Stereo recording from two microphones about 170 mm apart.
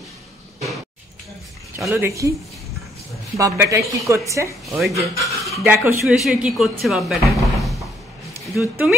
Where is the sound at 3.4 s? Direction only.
20° right (ahead or behind).